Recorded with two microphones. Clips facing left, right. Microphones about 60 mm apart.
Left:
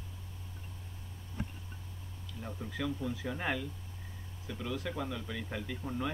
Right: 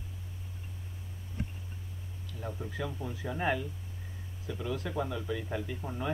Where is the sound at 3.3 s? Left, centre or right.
Right.